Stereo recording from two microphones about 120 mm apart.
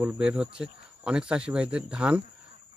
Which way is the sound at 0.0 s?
10° right (ahead or behind).